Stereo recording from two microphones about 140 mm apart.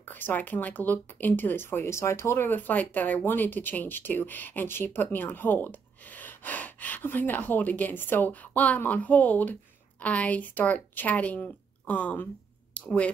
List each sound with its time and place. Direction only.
0.0 s speech: 15° left (ahead or behind)